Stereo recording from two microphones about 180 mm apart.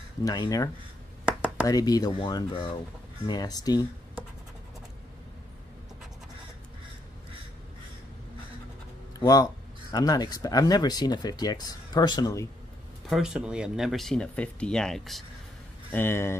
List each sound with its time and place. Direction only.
0.2 s speech: 20° left (ahead or behind)
1.2 s a sound: 5° right (ahead or behind)
1.7 s speech: 20° left (ahead or behind)
9.2 s speech: 20° left (ahead or behind)
13.1 s speech: 5° right (ahead or behind)
15.9 s speech: 10° left (ahead or behind)